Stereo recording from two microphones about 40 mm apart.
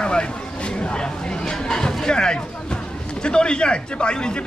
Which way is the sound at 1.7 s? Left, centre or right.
Centre.